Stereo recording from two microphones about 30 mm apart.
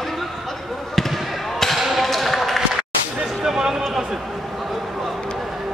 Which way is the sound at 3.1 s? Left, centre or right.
Right.